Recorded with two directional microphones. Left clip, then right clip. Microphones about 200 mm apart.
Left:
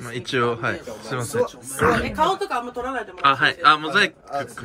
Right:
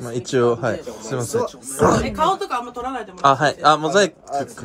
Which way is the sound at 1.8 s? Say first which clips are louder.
Right 3 dB; 30° right (ahead or behind).